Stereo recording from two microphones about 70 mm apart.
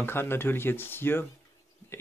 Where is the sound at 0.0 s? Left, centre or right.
Left.